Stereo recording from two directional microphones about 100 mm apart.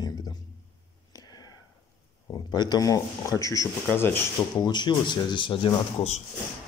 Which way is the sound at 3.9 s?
20° left (ahead or behind).